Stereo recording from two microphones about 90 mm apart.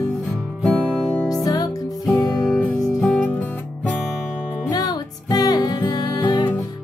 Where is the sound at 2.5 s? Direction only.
20° left (ahead or behind).